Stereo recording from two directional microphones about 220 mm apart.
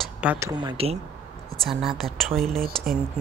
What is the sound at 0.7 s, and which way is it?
Speech, 25° right (ahead or behind).